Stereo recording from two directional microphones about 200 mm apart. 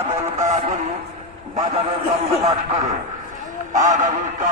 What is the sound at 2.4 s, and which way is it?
Speech, 30° right (ahead or behind).